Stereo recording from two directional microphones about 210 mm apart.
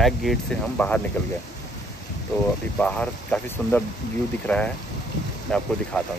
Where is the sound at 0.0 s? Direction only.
Centre (ahead or behind).